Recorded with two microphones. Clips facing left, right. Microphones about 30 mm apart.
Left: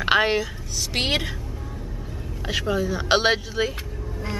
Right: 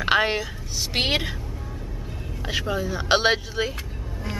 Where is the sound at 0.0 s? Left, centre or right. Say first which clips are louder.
Left 1 dB; centre.